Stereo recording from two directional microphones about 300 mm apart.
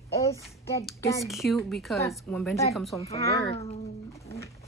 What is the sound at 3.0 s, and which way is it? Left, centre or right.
Speech, centre.